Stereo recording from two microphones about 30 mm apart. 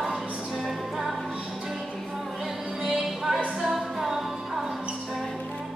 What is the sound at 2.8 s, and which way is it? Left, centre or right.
Music, centre.